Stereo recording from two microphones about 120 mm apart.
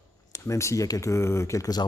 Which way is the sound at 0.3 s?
25° left (ahead or behind).